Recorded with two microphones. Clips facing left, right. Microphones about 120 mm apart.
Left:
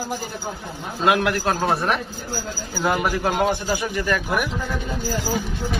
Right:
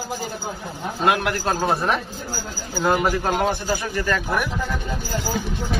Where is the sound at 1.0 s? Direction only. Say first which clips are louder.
Left 1 dB; 25° right (ahead or behind).